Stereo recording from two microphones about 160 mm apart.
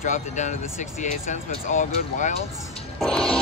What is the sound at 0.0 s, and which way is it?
Speech, 50° left (ahead or behind).